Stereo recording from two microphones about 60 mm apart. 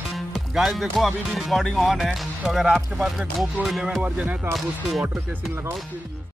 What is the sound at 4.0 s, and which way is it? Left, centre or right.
Speech, right.